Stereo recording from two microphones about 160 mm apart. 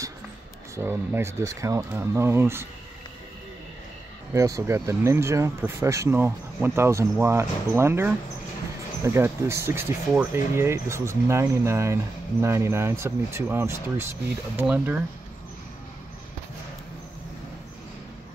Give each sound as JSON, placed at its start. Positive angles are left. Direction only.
{"t": 0.7, "sound": "speech", "side_deg": -15}
{"t": 4.3, "sound": "speech", "side_deg": -20}